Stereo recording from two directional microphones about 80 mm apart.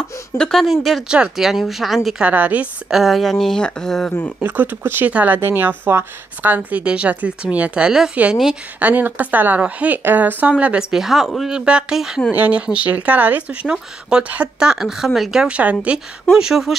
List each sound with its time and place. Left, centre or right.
0.4 s speech: centre
2.2 s speech: centre
2.9 s speech: centre
4.4 s speech: right; by 8.2 s centre
8.7 s speech: right
10.5 s speech: centre
16.3 s speech: centre